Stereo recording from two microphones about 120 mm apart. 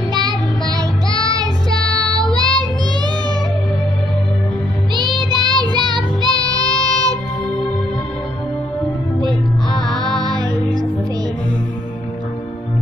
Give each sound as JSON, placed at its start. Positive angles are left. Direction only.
{"t": 0.1, "sound": "child singing", "side_deg": -35}
{"t": 2.0, "sound": "child singing", "side_deg": -30}
{"t": 5.3, "sound": "child singing", "side_deg": -35}
{"t": 10.1, "sound": "music", "side_deg": -35}